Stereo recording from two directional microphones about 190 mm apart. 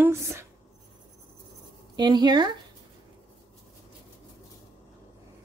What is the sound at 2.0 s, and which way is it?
Speech, 25° right (ahead or behind).